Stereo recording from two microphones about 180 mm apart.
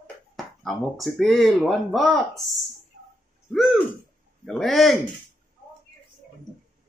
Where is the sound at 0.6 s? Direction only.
Centre (ahead or behind).